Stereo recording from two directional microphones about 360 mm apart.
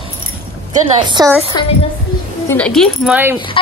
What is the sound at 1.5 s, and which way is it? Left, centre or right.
A woman's voice, centre.